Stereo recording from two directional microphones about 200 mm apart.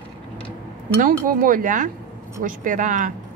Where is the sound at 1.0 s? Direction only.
45° right (ahead or behind).